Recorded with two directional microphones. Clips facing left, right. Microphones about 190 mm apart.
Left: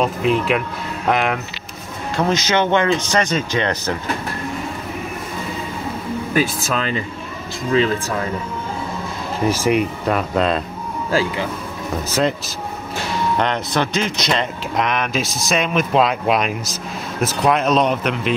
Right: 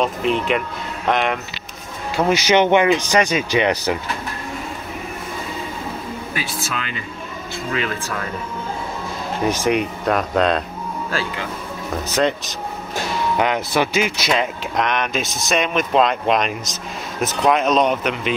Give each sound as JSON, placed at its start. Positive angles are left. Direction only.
{"t": 0.0, "sound": "speech", "side_deg": 5}
{"t": 2.1, "sound": "speech", "side_deg": -10}
{"t": 6.3, "sound": "speech", "side_deg": 40}
{"t": 9.4, "sound": "speech", "side_deg": 5}
{"t": 11.1, "sound": "speech", "side_deg": 15}
{"t": 12.2, "sound": "speech", "side_deg": 5}
{"t": 13.4, "sound": "speech", "side_deg": -5}